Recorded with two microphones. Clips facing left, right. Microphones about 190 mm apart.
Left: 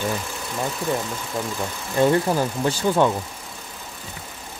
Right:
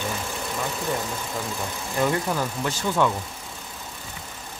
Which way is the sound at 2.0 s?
30° left (ahead or behind).